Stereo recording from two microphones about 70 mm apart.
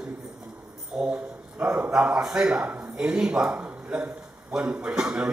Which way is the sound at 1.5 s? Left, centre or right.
Right.